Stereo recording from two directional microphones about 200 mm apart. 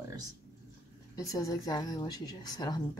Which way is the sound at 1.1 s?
15° left (ahead or behind).